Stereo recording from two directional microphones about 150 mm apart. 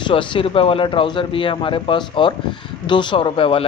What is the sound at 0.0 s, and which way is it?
Speech, 35° left (ahead or behind).